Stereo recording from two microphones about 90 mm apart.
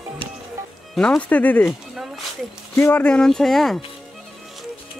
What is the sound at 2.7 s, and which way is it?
Speech, 20° left (ahead or behind).